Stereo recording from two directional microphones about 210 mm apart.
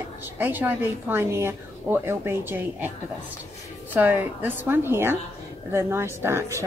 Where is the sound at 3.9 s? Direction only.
10° right (ahead or behind).